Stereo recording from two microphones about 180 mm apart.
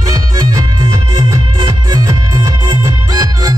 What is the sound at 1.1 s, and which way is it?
Music, 20° right (ahead or behind).